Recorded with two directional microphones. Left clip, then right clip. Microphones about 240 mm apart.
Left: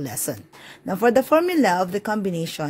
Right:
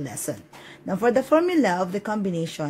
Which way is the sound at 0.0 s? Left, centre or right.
Left.